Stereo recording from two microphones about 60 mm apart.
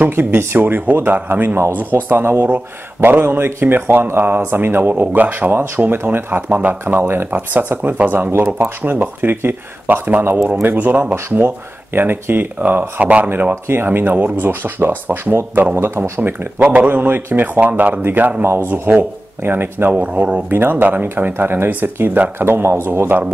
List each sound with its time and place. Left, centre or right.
0.0 s speech: right
4.9 s speech: right
6.5 s speech: right
7.0 s speech: right
7.2 s speech: right
8.3 s speech: right
11.3 s speech: right
19.9 s speech: right